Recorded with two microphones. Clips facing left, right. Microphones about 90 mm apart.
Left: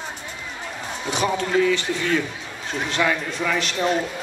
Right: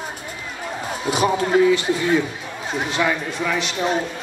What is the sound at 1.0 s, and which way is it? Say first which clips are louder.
Speech: right 3 dB; 10° right (ahead or behind).